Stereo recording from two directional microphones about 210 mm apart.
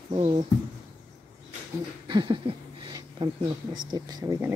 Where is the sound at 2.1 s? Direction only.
20° right (ahead or behind).